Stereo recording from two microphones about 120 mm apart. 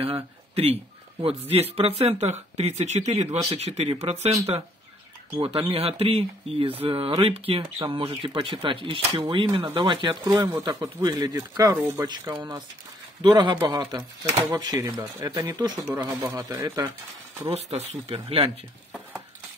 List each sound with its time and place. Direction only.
0.0 s a sound: 55° right (ahead or behind)
1.5 s speech: 55° right (ahead or behind)
5.4 s speech: 50° right (ahead or behind); by 12.1 s 20° right (ahead or behind)
12.4 s speech: 35° right (ahead or behind)
17.5 s speech: 60° right (ahead or behind)